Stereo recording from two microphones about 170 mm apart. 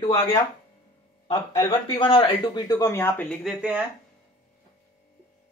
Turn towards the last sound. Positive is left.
turn(degrees=-5)  # may be behind; listen again after turning